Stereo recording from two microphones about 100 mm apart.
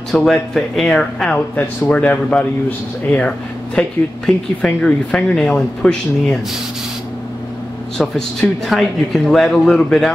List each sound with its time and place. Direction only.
0.1 s speech: centre (ahead or behind)
1.3 s speech: 15° left (ahead or behind)
8.0 s speech: centre (ahead or behind)